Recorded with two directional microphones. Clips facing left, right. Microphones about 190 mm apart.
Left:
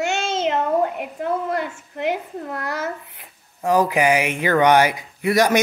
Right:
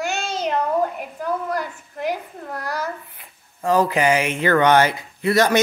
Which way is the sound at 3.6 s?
15° left (ahead or behind).